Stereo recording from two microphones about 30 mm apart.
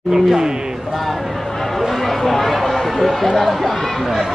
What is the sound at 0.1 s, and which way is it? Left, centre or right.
Speech, centre.